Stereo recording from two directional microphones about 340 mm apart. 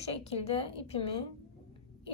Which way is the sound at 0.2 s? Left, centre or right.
Centre.